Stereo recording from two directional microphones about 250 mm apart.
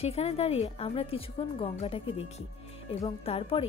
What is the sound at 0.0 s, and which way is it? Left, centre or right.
Speech, left.